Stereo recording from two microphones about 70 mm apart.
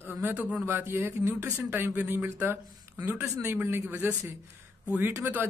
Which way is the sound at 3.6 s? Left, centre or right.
Right.